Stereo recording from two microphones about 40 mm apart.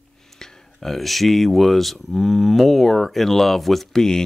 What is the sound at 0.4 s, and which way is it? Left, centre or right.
Speech, centre.